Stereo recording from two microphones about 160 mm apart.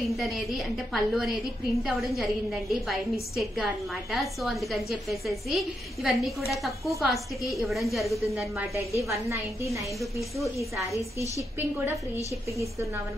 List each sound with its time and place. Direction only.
0.0 s a woman's voice: centre (ahead or behind)
10.6 s a woman's voice: 20° right (ahead or behind)